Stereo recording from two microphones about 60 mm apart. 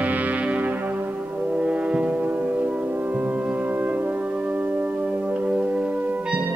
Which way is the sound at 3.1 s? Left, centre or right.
Right.